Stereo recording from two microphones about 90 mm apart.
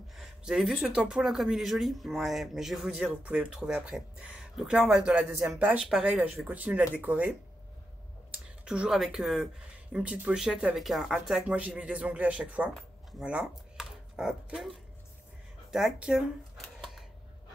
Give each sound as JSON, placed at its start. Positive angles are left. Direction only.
{"t": 0.1, "sound": "a sound", "side_deg": -5}
{"t": 0.9, "sound": "speech", "side_deg": -5}
{"t": 5.9, "sound": "speech", "side_deg": -5}
{"t": 6.4, "sound": "speech", "side_deg": -15}
{"t": 9.9, "sound": "speech", "side_deg": -15}
{"t": 11.4, "sound": "speech", "side_deg": -15}